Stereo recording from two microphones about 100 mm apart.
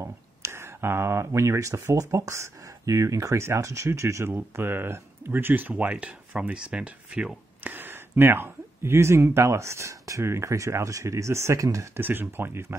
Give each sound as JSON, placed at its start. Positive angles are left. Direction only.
{"t": 0.0, "sound": "speech", "side_deg": -25}